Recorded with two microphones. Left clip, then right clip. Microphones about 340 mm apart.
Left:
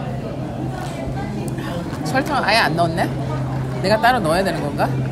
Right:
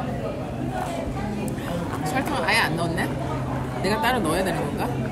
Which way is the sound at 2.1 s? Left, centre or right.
Centre.